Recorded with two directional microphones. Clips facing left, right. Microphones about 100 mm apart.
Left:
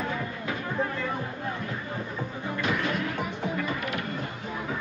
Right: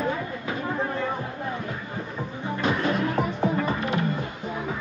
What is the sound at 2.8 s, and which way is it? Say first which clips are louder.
Music: right 5 dB; 35° right (ahead or behind).